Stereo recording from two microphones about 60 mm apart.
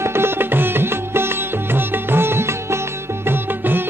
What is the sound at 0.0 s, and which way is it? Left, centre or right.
Music, right.